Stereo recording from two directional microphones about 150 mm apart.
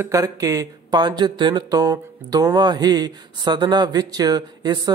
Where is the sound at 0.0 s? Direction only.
20° right (ahead or behind).